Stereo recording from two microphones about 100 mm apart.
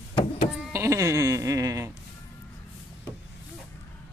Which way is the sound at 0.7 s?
30° right (ahead or behind).